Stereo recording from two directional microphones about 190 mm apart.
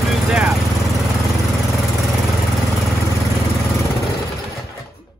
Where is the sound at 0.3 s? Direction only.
5° right (ahead or behind).